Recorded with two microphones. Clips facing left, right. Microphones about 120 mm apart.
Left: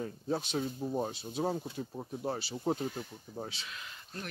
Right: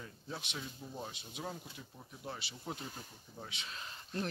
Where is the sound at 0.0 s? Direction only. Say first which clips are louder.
Left 12 dB; 40° left (ahead or behind).